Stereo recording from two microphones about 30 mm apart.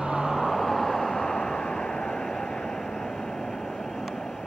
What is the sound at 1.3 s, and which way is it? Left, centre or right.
Vehicle, left.